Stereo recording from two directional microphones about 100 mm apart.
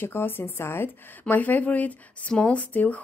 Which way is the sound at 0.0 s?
20° left (ahead or behind).